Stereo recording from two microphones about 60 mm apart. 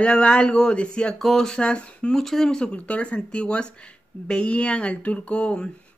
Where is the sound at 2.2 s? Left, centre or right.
Centre.